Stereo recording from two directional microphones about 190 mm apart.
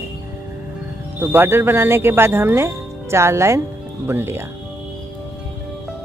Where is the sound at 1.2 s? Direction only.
10° right (ahead or behind).